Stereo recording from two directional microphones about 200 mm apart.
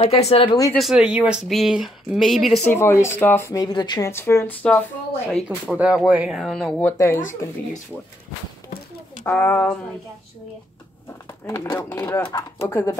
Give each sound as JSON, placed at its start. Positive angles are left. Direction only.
{"t": 0.0, "sound": "speech", "side_deg": 30}
{"t": 0.7, "sound": "speech", "side_deg": -5}
{"t": 2.7, "sound": "speech", "side_deg": 10}
{"t": 5.8, "sound": "speech", "side_deg": -5}
{"t": 9.2, "sound": "speech", "side_deg": 10}
{"t": 11.4, "sound": "speech", "side_deg": 15}